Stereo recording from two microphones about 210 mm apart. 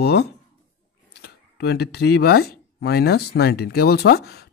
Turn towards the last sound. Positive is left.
turn(degrees=50)  # may be behind; listen again after turning